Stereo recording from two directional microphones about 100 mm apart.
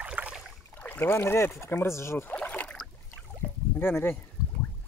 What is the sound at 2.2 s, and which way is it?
Rowboat, 15° left (ahead or behind).